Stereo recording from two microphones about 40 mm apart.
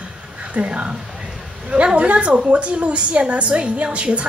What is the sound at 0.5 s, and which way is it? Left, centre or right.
A woman's voice, right.